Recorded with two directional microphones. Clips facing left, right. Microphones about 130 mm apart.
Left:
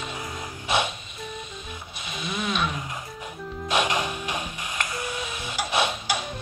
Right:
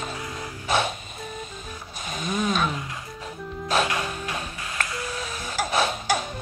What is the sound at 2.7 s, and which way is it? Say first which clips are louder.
Music: even; 20° left (ahead or behind).